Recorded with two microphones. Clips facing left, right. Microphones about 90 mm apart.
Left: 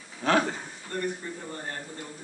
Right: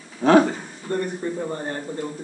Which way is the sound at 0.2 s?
15° right (ahead or behind).